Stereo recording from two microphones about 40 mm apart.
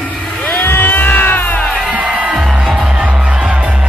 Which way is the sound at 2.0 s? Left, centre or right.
Right.